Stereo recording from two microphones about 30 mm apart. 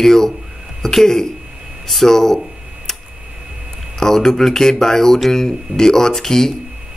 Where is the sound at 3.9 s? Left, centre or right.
Centre.